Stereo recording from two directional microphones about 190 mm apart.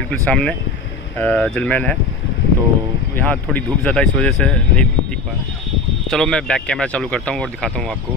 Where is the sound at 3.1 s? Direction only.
5° left (ahead or behind).